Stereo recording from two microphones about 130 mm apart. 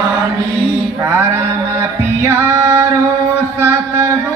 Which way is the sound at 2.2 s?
25° right (ahead or behind).